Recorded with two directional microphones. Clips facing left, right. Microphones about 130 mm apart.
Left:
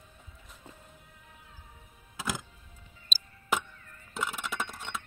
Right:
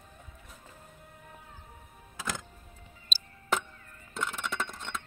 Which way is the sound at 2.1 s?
5° left (ahead or behind).